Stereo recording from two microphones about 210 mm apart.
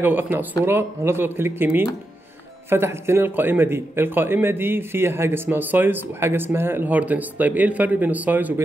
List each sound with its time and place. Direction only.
0.0 s a man's voice: 10° right (ahead or behind)